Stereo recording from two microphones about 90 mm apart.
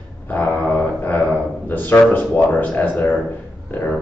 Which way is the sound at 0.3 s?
20° left (ahead or behind).